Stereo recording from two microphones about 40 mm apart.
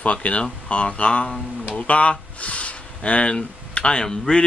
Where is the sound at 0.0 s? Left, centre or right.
Left.